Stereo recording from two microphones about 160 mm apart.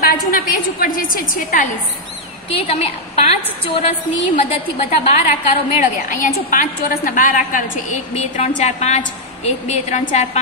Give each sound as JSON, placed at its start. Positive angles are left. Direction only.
{"t": 0.0, "sound": "a woman's voice", "side_deg": 60}
{"t": 2.5, "sound": "a woman's voice", "side_deg": 40}